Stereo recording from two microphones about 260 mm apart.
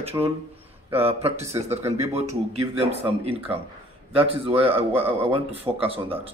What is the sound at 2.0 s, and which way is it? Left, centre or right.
A man's voice, right.